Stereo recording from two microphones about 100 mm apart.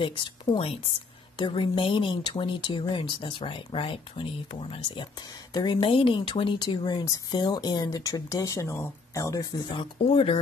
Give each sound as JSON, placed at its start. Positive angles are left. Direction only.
{"t": 0.0, "sound": "speech", "side_deg": 60}
{"t": 5.5, "sound": "speech", "side_deg": 45}
{"t": 9.7, "sound": "speech", "side_deg": 55}